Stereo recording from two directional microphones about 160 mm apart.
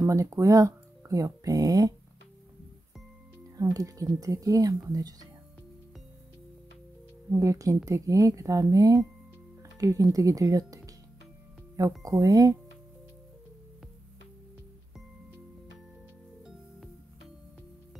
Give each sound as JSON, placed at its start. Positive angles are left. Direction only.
{"t": 0.0, "sound": "speech", "side_deg": -20}
{"t": 3.5, "sound": "speech", "side_deg": -20}
{"t": 7.3, "sound": "speech", "side_deg": -20}
{"t": 12.0, "sound": "speech", "side_deg": -20}